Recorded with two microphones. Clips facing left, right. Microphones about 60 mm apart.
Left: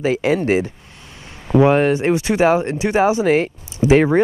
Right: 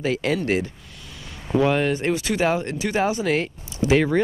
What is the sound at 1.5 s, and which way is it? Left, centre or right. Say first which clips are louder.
Speech: left 6 dB; left.